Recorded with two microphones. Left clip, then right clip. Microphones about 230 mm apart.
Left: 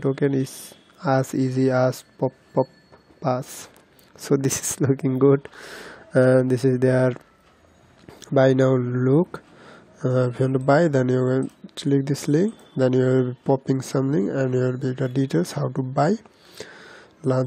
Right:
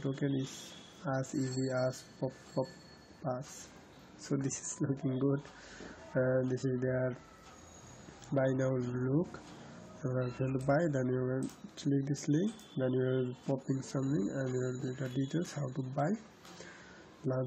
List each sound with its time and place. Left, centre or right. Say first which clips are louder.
0.0 s speech: left 14 dB; left
4.2 s speech: left 15 dB; left
8.2 s speech: left 15 dB; left
10.7 s speech: left 13 dB; left